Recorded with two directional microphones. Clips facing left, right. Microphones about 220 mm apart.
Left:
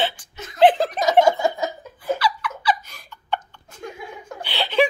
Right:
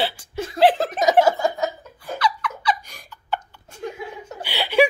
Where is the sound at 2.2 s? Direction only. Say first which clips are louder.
Even; 5° left (ahead or behind).